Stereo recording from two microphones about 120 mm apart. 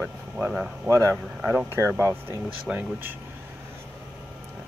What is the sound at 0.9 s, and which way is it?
Speech, 20° right (ahead or behind).